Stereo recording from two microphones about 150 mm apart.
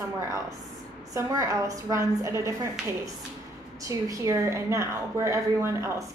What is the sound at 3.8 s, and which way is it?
A woman's voice, 20° right (ahead or behind).